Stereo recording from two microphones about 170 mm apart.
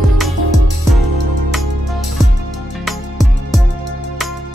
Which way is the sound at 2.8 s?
Centre (ahead or behind).